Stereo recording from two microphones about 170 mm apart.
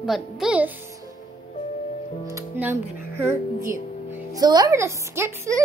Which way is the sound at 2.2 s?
15° right (ahead or behind).